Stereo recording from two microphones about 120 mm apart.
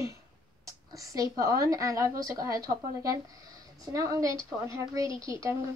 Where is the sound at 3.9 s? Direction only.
25° right (ahead or behind).